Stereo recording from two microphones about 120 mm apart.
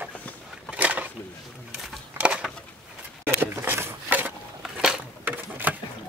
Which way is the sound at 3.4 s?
20° right (ahead or behind).